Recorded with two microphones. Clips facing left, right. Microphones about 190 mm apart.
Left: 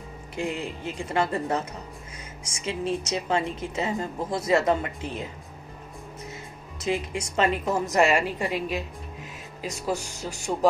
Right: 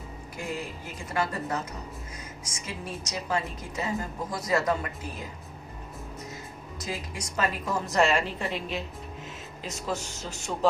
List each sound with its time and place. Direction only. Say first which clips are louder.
0.4 s a woman's voice: left 5 dB; 25° left (ahead or behind)
6.8 s a woman's voice: left 8 dB; 25° left (ahead or behind)